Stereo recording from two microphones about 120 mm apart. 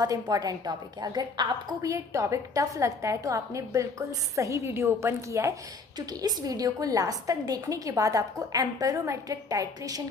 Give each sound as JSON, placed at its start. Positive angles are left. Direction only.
{"t": 0.0, "sound": "a woman's voice", "side_deg": -30}